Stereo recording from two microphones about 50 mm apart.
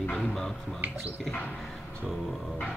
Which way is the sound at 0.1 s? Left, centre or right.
Centre.